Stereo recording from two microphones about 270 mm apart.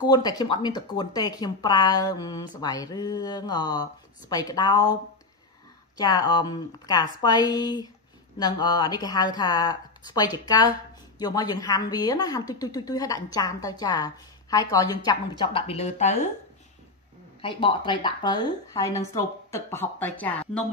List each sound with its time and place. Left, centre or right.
0.0 s a woman's voice: centre
5.9 s a woman's voice: centre
17.4 s a woman's voice: centre